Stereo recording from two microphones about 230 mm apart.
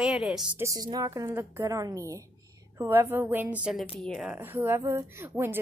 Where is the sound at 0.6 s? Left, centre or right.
Centre.